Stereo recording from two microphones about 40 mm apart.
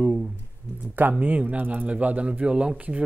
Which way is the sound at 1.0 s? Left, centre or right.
Right.